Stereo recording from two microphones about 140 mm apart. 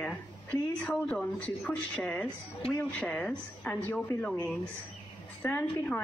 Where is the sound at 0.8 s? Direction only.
5° left (ahead or behind).